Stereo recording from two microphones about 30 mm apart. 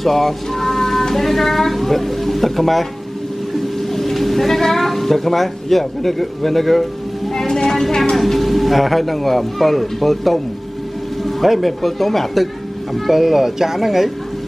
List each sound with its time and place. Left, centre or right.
0.0 s speech: centre
3.9 s a sound: centre
7.4 s a sound: centre
8.2 s speech: centre
11.4 s speech: centre
11.8 s speech: centre
13.1 s speech: centre